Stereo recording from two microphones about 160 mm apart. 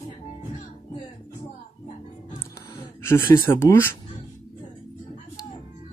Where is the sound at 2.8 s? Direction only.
15° left (ahead or behind).